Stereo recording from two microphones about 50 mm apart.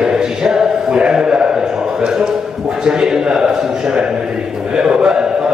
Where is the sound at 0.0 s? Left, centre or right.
Centre.